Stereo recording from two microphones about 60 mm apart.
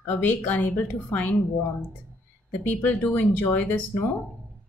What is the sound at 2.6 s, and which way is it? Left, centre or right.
Speech, left.